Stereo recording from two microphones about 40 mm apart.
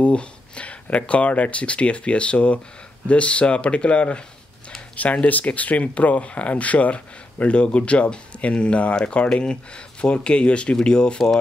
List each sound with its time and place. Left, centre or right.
0.0 s speech: left